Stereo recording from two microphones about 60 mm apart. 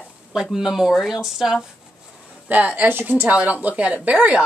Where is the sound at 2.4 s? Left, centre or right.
Right.